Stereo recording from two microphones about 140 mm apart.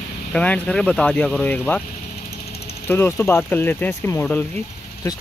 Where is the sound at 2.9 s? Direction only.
15° left (ahead or behind).